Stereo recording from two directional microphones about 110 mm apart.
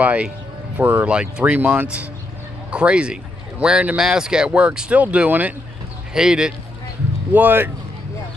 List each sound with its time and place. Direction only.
0.0 s a man's voice: 15° right (ahead or behind)
7.3 s a man's voice: 15° right (ahead or behind)